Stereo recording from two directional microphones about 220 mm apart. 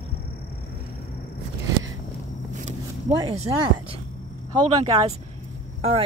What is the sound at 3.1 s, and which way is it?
Speech, 25° right (ahead or behind).